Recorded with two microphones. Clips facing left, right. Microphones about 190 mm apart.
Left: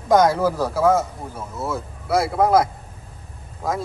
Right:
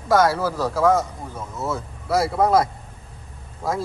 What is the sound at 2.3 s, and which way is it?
Speech, 5° left (ahead or behind).